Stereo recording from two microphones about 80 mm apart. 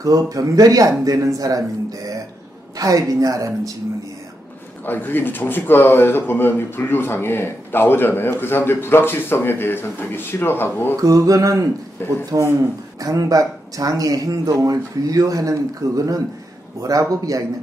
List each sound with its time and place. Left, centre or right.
0.0 s speech: right
4.8 s speech: left
11.0 s speech: right
12.0 s speech: left
13.0 s speech: right